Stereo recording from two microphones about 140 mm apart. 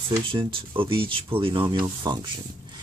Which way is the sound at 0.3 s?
40° right (ahead or behind).